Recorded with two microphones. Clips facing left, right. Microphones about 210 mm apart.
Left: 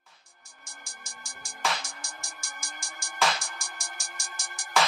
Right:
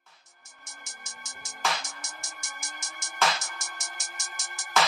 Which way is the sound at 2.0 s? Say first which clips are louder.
Even; 20° right (ahead or behind).